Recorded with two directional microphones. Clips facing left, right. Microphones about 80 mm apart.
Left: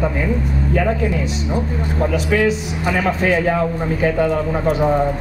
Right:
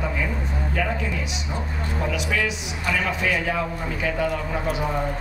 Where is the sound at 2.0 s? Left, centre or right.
Left.